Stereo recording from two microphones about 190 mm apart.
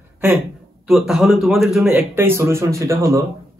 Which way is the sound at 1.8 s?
10° right (ahead or behind).